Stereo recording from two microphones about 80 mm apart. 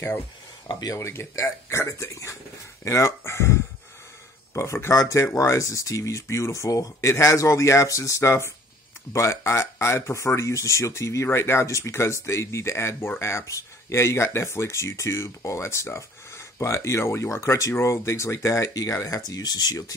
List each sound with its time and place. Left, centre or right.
0.7 s speech: left
0.9 s speech: left
4.8 s speech: left
18.7 s speech: left